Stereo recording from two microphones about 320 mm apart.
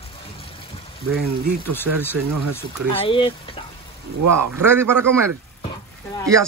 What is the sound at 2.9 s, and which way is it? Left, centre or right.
Speech, centre.